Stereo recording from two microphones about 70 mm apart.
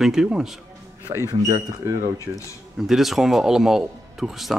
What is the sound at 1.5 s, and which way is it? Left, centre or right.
Speech, right.